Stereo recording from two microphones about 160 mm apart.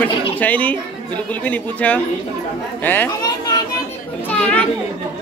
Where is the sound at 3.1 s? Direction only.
25° left (ahead or behind).